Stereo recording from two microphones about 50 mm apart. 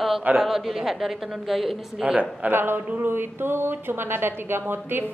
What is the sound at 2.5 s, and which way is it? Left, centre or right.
Speech, right.